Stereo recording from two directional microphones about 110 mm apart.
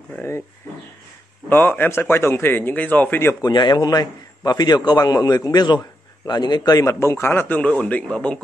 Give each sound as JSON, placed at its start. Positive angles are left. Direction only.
{"t": 1.5, "sound": "speech", "side_deg": 15}
{"t": 3.4, "sound": "a man's voice", "side_deg": 40}